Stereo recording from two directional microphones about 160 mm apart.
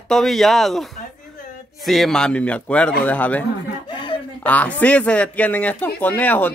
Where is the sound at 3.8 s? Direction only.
30° left (ahead or behind).